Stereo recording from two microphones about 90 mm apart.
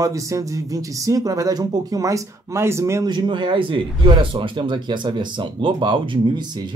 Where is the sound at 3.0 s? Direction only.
55° right (ahead or behind).